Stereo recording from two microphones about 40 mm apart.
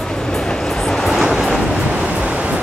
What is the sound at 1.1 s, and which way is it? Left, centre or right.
Vehicle, centre.